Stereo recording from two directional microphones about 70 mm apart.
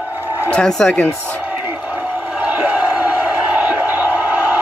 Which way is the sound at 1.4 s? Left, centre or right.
Right.